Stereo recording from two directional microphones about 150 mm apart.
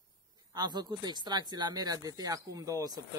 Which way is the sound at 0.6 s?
25° right (ahead or behind).